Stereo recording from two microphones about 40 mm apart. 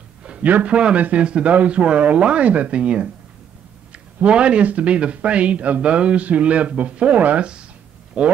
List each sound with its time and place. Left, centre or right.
0.4 s speech: right
1.8 s speech: right
3.9 s a sound: right
4.6 s speech: right